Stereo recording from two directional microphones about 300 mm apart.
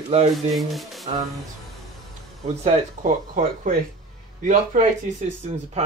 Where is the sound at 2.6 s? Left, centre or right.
Right.